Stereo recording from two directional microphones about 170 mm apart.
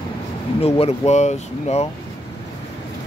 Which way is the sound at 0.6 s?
40° left (ahead or behind).